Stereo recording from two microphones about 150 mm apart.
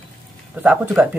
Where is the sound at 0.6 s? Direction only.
5° right (ahead or behind).